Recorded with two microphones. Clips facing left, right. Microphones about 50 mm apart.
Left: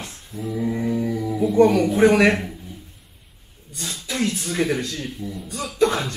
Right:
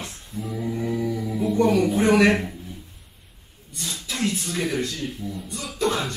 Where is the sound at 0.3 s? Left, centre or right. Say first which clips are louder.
Left 4 dB; centre.